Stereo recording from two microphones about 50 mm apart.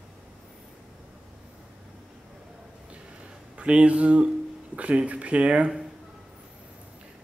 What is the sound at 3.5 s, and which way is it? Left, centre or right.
Speech, right.